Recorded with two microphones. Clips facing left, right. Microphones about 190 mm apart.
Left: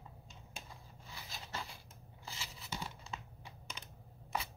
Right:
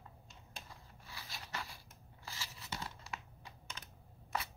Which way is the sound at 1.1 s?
20° left (ahead or behind).